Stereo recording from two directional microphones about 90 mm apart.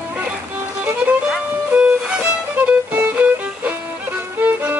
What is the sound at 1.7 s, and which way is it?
Music, 10° right (ahead or behind).